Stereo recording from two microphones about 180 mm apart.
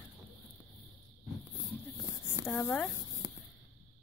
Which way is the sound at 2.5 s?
10° left (ahead or behind).